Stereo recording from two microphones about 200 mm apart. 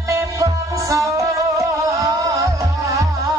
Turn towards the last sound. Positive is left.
turn(degrees=-15)  # may be behind; listen again after turning